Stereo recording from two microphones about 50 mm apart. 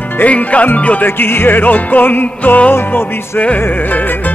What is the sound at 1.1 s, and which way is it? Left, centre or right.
Music, left.